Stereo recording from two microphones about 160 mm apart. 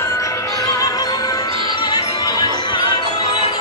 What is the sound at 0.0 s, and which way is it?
Music, 20° left (ahead or behind).